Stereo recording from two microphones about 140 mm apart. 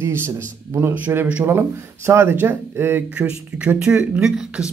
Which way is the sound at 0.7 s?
15° right (ahead or behind).